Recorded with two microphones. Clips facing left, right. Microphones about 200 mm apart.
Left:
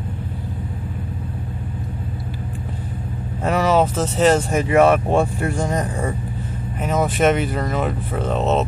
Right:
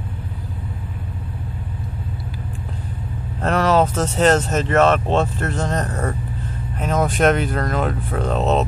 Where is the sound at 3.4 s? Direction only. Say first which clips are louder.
Even; 5° left (ahead or behind).